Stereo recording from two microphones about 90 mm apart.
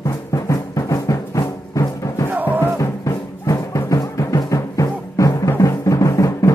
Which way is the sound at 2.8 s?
40° left (ahead or behind).